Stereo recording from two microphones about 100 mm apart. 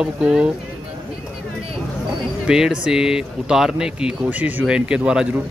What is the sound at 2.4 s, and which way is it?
Speech, 5° right (ahead or behind).